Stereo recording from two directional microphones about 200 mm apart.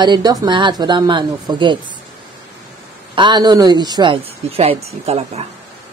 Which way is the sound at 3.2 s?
20° right (ahead or behind).